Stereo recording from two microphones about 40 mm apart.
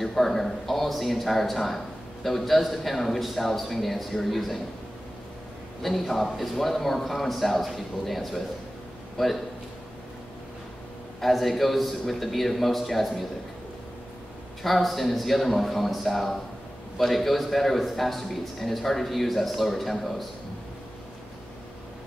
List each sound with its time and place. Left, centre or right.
0.0 s a man's voice: centre
5.8 s a man's voice: centre
11.1 s a man's voice: centre
14.6 s a man's voice: centre